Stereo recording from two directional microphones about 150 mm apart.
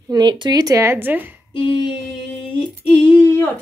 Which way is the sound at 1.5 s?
30° left (ahead or behind).